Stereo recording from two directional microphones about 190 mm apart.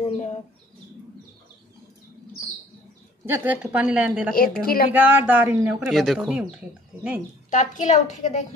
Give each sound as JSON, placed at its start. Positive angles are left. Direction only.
{"t": 0.0, "sound": "bird", "side_deg": 35}
{"t": 3.3, "sound": "speech", "side_deg": -10}
{"t": 4.4, "sound": "a woman's voice", "side_deg": 50}
{"t": 4.9, "sound": "speech", "side_deg": -10}
{"t": 7.5, "sound": "a woman's voice", "side_deg": 40}